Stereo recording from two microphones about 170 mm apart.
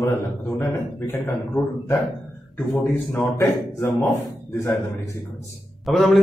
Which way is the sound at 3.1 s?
15° left (ahead or behind).